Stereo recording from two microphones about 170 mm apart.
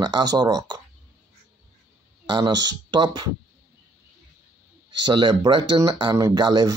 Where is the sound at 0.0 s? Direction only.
25° right (ahead or behind).